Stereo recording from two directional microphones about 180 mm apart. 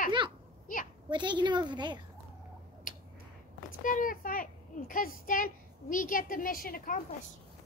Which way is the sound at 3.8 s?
50° left (ahead or behind).